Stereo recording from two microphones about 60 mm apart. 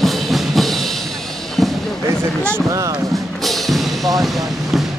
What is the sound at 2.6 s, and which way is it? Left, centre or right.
Music, right.